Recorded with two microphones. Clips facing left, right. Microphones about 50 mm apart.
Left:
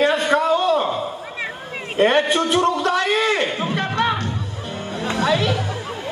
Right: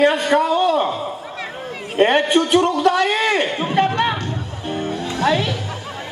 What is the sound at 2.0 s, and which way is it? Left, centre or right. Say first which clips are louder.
A man's voice: right 2 dB; right.